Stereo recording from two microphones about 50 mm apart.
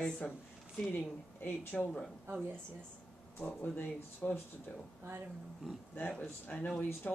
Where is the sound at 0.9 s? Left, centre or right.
Left.